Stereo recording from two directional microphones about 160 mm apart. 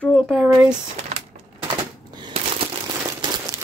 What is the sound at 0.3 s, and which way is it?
Speech, 5° right (ahead or behind).